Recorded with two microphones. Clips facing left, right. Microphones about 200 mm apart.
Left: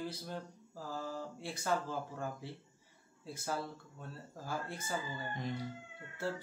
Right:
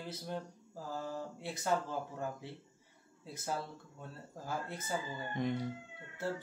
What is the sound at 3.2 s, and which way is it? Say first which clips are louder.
Speech: even; 20° right (ahead or behind).